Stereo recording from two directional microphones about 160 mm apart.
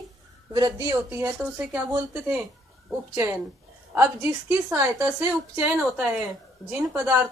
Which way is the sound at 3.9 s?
15° right (ahead or behind).